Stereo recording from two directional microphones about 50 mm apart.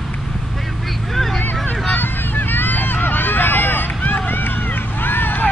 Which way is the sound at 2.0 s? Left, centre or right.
Left.